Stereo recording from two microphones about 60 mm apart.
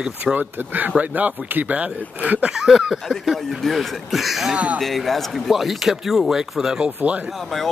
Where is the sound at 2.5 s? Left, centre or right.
Centre.